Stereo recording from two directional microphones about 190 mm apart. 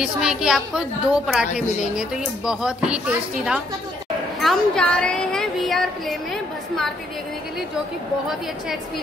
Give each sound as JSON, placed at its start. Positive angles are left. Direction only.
{"t": 0.0, "sound": "speech", "side_deg": -5}